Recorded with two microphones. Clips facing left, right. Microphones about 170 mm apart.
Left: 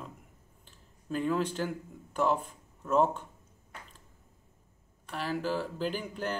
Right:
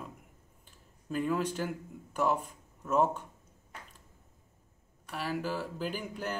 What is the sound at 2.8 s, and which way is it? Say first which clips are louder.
Speech: left 2 dB; 5° right (ahead or behind).